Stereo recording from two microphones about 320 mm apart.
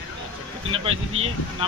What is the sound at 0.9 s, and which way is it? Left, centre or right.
Speech, centre.